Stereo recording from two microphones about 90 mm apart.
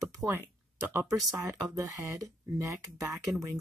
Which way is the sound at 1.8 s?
35° right (ahead or behind).